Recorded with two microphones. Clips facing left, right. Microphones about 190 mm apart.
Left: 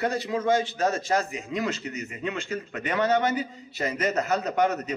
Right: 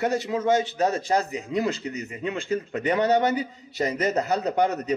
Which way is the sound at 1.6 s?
30° right (ahead or behind).